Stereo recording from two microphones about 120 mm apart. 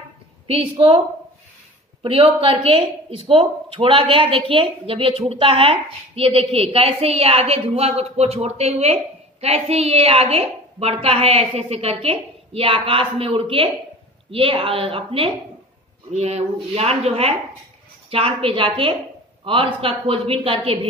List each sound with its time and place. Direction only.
0.5 s speech: 45° right (ahead or behind)
2.0 s a woman's voice: 50° right (ahead or behind)
16.1 s a woman's voice: 65° right (ahead or behind)